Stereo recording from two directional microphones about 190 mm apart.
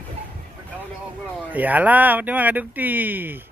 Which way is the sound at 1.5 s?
10° right (ahead or behind).